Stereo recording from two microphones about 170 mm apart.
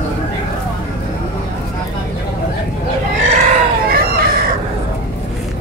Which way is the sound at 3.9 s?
60° right (ahead or behind).